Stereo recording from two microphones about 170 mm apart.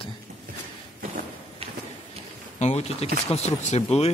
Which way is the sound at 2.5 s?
40° left (ahead or behind).